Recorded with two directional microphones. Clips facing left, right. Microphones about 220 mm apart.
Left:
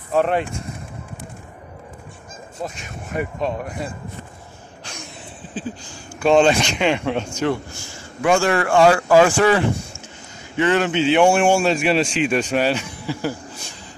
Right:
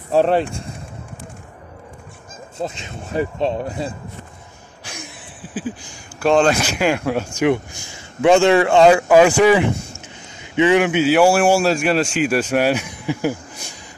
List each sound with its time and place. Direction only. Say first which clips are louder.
0.1 s speech: right 3 dB; 30° right (ahead or behind)
2.6 s speech: right 4 dB; 25° right (ahead or behind)
5.5 s a sound: right 3 dB; 10° right (ahead or behind)
6.2 s speech: even; centre (ahead or behind); by 13.7 s 15° right (ahead or behind)